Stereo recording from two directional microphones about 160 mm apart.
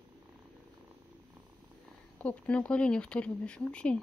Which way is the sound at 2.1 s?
10° left (ahead or behind).